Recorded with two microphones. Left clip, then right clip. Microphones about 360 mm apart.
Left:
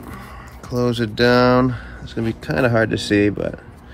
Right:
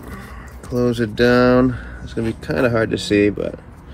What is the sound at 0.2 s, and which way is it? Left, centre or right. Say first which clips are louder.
Speech: even; centre.